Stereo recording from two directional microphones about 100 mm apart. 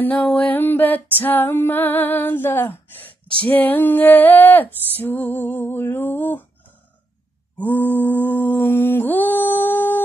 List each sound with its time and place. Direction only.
0.0 s music: 15° left (ahead or behind)
1.2 s female singing: 20° left (ahead or behind)
7.5 s mantra: 20° left (ahead or behind)